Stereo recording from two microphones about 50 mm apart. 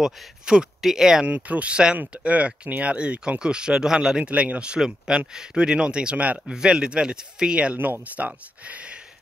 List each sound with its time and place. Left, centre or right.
0.0 s speech: centre
1.2 s speech: right
4.3 s speech: right
6.4 s speech: centre